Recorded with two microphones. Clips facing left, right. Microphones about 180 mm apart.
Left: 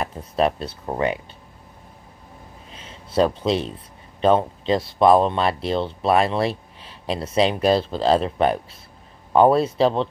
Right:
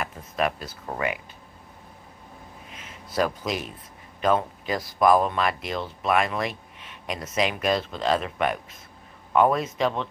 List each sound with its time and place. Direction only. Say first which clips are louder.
0.0 s speech: left 5 dB; 30° left (ahead or behind)
2.7 s speech: left 7 dB; 30° left (ahead or behind)